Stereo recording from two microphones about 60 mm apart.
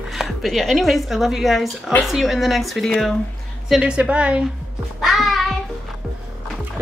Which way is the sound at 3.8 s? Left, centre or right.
Centre.